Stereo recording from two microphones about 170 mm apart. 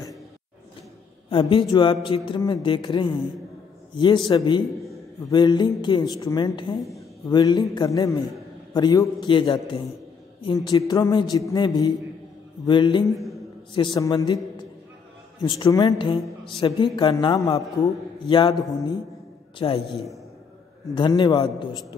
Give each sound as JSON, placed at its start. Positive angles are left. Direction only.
{"t": 1.3, "sound": "a man's voice", "side_deg": 30}
{"t": 15.7, "sound": "a man's voice", "side_deg": 30}
{"t": 19.6, "sound": "a man's voice", "side_deg": 30}
{"t": 20.9, "sound": "a man's voice", "side_deg": 25}